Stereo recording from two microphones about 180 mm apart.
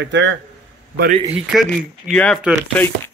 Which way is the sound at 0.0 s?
90° right.